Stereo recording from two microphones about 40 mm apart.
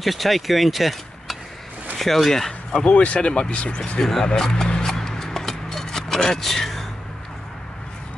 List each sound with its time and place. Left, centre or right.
0.0 s speech: centre
2.8 s speech: left
4.0 s speech: centre
4.8 s a sound: centre